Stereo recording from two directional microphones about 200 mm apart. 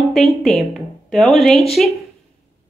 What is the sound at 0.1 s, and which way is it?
A woman's voice, centre (ahead or behind).